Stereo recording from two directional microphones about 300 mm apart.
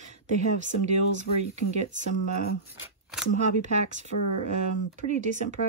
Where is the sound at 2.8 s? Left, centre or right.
Centre.